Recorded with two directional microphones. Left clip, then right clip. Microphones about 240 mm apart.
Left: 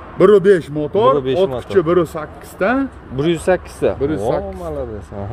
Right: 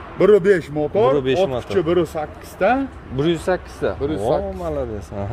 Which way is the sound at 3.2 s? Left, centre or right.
Centre.